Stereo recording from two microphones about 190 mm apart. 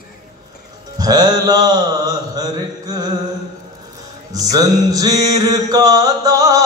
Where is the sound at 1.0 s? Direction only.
20° right (ahead or behind).